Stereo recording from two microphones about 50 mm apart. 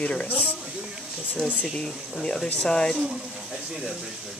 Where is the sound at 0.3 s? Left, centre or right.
Left.